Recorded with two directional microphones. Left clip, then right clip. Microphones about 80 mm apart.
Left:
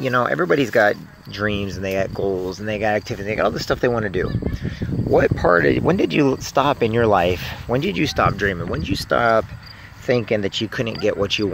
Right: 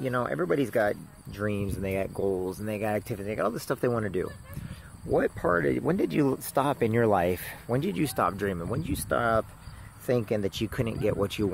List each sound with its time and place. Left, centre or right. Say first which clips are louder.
0.0 s speech: left 10 dB; left
1.4 s speech: left 9 dB; centre
1.8 s speech: left 8 dB; right
2.6 s speech: left 9 dB; centre
5.1 s speech: left 10 dB; left
5.9 s speech: left 9 dB; centre
6.3 s speech: left 9 dB; right
9.1 s speech: left 9 dB; centre
10.0 s speech: left 8 dB; centre